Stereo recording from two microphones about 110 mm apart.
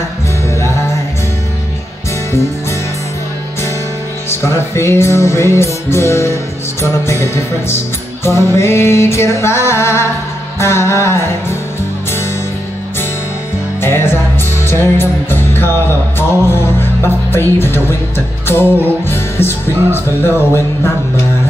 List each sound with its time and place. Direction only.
4.3 s music: 25° left (ahead or behind)
13.7 s music: 20° left (ahead or behind)